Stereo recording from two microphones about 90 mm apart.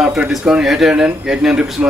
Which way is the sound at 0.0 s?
5° right (ahead or behind).